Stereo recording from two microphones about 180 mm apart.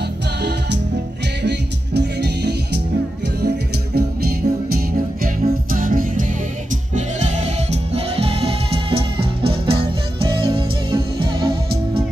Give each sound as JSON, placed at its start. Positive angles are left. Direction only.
{"t": 0.4, "sound": "music", "side_deg": -70}